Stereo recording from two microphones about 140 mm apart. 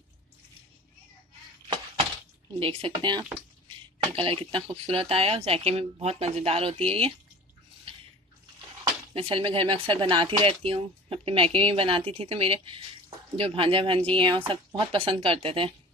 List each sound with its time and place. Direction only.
2.6 s speech: 35° right (ahead or behind)
9.1 s speech: 40° right (ahead or behind)